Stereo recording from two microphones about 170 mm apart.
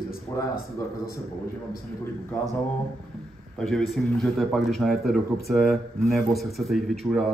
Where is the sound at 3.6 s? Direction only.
Centre (ahead or behind).